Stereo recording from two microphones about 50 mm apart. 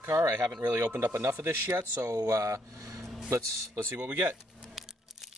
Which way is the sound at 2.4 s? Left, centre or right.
Right.